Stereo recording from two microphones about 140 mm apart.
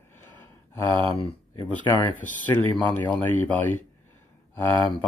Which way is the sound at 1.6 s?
30° left (ahead or behind).